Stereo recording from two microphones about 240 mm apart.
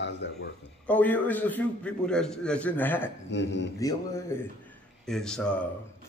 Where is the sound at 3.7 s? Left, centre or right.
Centre.